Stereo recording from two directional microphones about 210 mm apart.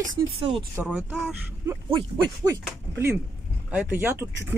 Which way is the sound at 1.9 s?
20° right (ahead or behind).